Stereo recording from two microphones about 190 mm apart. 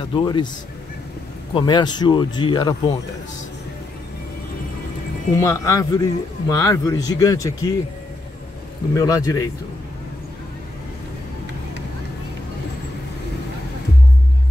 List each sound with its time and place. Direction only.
0.1 s speech: 25° left (ahead or behind)
1.5 s speech: 25° left (ahead or behind)
5.3 s speech: 15° left (ahead or behind)
8.9 s speech: 20° left (ahead or behind)